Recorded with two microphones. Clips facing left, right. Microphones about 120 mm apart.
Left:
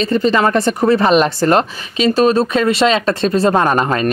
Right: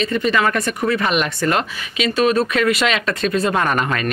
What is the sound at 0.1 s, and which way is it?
Speech, 30° left (ahead or behind).